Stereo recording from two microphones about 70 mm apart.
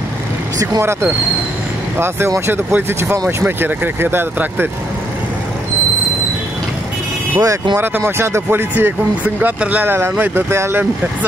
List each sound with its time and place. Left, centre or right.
2.0 s speech: right
7.3 s speech: right
7.7 s speech: right